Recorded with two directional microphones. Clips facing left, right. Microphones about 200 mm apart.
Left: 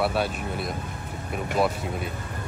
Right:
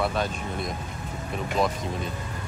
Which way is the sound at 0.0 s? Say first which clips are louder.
Left 2 dB; 5° left (ahead or behind).